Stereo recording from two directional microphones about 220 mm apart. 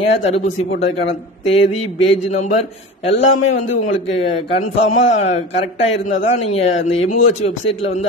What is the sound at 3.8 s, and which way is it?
A man's voice, 30° left (ahead or behind).